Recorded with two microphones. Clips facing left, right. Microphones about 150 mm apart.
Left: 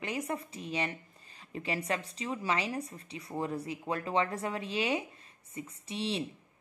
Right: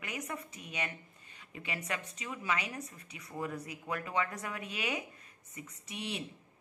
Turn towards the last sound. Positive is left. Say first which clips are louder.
# left 6 dB
turn(degrees=30)  # may be behind; listen again after turning